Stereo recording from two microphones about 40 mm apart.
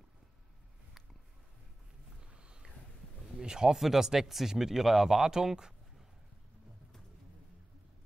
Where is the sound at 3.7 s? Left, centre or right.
Centre.